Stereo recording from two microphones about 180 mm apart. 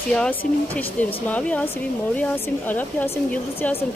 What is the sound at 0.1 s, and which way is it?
Speech, 5° left (ahead or behind).